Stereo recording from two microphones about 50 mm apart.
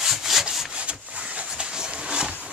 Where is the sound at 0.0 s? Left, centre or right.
Centre; by 1.5 s right.